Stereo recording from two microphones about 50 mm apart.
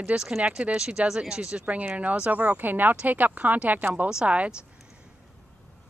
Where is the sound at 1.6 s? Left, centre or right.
Right.